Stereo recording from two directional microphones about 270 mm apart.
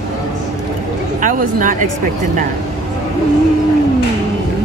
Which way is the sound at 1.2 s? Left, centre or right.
Right.